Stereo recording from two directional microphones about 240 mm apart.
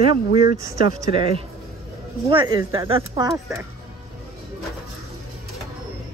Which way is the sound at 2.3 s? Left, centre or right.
Centre.